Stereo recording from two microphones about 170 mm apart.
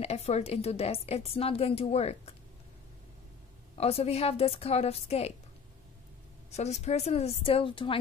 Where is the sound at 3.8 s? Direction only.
35° left (ahead or behind).